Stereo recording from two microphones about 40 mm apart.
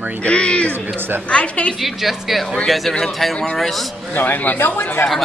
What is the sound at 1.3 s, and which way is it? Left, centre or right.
Speech, left.